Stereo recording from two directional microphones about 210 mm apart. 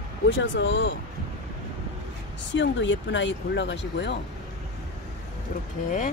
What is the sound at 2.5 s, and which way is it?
Speech, 60° left (ahead or behind).